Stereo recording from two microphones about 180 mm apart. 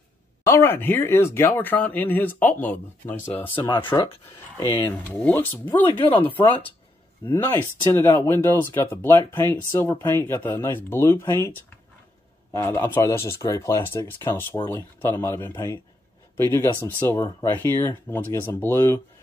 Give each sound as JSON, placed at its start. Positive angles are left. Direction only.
{"t": 0.5, "sound": "speech", "side_deg": 15}
{"t": 3.4, "sound": "speech", "side_deg": 25}
{"t": 4.8, "sound": "speech", "side_deg": 10}
{"t": 5.9, "sound": "speech", "side_deg": 30}
{"t": 7.2, "sound": "speech", "side_deg": 15}